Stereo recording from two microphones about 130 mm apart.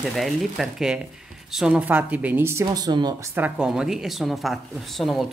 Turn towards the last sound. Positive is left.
turn(degrees=0)  # may be behind; listen again after turning